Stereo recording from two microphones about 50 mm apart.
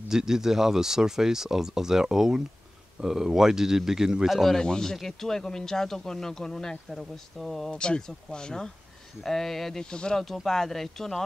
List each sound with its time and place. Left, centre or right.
0.1 s speech: centre
4.4 s speech: centre
7.7 s speech: centre
9.8 s speech: centre
10.2 s speech: centre